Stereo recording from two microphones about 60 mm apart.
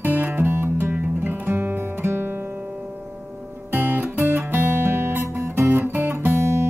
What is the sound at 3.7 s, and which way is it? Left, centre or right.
Music, right.